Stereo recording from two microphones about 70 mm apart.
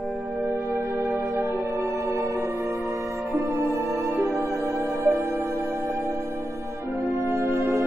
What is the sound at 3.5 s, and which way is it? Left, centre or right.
Music, right.